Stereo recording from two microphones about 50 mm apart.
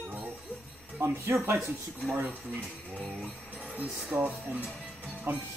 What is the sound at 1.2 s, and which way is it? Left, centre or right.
Speech, right.